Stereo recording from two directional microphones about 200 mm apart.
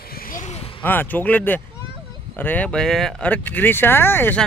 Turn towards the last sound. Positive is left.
turn(degrees=10)  # may be behind; listen again after turning